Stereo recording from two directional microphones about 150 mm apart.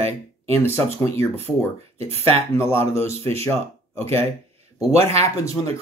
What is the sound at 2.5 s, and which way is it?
Speech, 15° left (ahead or behind).